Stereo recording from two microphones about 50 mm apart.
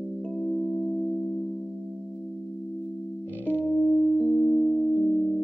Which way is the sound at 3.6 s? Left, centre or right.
Centre.